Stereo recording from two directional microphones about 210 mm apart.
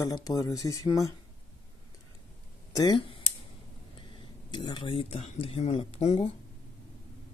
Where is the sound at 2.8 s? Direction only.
25° left (ahead or behind).